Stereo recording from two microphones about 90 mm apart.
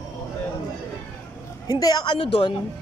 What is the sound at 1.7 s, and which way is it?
Speech, 45° left (ahead or behind).